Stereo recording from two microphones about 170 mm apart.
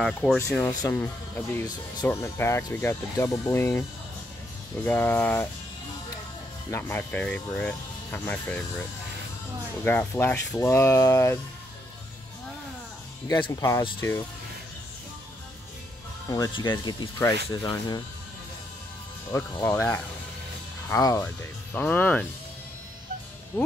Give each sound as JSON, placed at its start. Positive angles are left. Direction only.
{"t": 0.0, "sound": "speech", "side_deg": 0}
{"t": 0.6, "sound": "speech", "side_deg": 10}
{"t": 6.7, "sound": "speech", "side_deg": 15}
{"t": 9.8, "sound": "speech", "side_deg": 15}
{"t": 13.3, "sound": "speech", "side_deg": 20}
{"t": 16.3, "sound": "speech", "side_deg": 25}
{"t": 19.3, "sound": "speech", "side_deg": 15}